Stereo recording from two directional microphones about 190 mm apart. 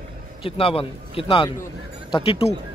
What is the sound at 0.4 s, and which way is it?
A man's voice, 30° left (ahead or behind).